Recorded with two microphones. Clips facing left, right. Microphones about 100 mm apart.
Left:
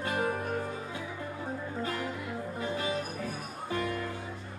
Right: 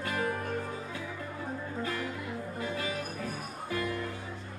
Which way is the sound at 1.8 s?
30° left (ahead or behind).